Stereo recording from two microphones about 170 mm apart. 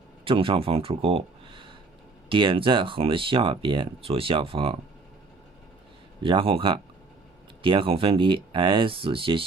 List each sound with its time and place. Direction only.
0.2 s speech: 30° right (ahead or behind)
6.2 s speech: 30° right (ahead or behind)